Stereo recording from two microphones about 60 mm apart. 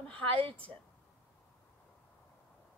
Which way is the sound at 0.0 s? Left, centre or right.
Left.